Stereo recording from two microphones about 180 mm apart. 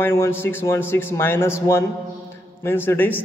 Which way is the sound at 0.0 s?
15° left (ahead or behind).